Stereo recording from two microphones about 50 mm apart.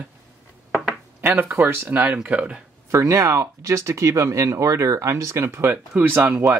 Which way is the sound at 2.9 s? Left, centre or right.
Right.